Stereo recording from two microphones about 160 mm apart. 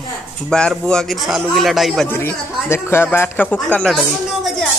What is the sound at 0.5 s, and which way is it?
A woman's voice, 5° left (ahead or behind).